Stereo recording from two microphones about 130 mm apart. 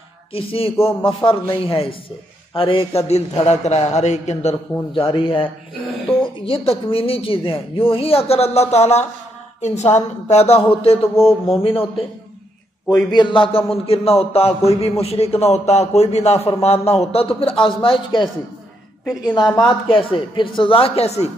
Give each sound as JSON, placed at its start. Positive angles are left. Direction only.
{"t": 0.3, "sound": "a man's voice", "side_deg": 45}
{"t": 4.9, "sound": "a man's voice", "side_deg": 40}
{"t": 13.1, "sound": "a man's voice", "side_deg": 40}